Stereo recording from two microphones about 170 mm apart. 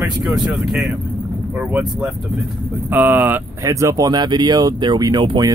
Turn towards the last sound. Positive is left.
turn(degrees=-25)  # may be behind; listen again after turning